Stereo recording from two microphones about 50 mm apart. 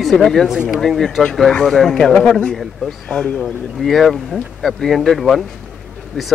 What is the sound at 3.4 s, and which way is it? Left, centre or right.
Speech, centre.